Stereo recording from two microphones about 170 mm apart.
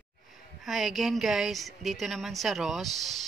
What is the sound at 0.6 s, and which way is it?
A woman's voice, centre (ahead or behind).